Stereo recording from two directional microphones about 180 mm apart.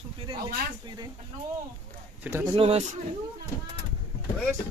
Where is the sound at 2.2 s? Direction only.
15° right (ahead or behind).